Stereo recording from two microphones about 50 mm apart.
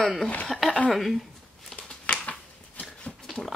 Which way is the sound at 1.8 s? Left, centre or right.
Left.